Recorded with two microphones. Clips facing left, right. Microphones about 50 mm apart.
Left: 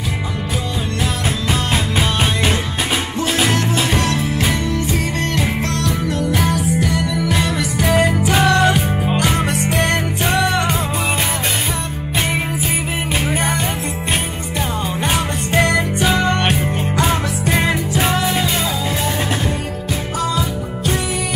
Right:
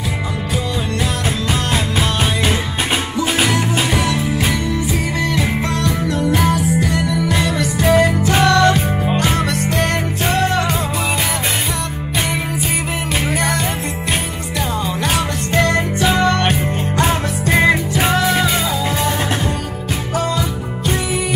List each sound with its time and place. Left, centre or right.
1.7 s music: centre
3.5 s music: centre
6.1 s music: centre
9.5 s music: left
13.3 s music: left
15.0 s music: centre
16.5 s music: centre